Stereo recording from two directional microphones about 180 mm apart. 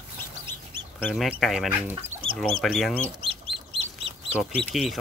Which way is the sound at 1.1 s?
Centre (ahead or behind).